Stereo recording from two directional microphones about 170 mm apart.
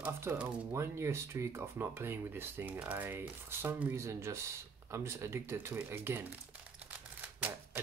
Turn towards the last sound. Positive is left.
turn(degrees=-10)  # may be behind; listen again after turning